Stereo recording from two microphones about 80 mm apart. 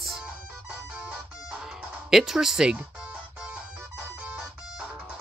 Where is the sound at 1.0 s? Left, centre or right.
Centre.